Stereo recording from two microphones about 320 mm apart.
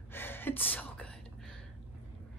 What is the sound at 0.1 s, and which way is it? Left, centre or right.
Gasp, centre.